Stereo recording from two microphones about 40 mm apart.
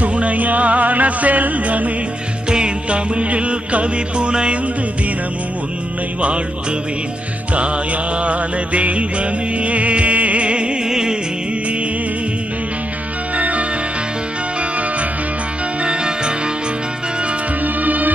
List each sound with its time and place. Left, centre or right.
0.0 s music: right
2.5 s music: right
8.2 s music: right; by 11.1 s centre
13.4 s music: right
15.8 s music: right
17.8 s music: right